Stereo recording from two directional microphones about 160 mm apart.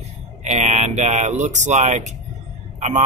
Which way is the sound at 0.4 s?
45° right (ahead or behind).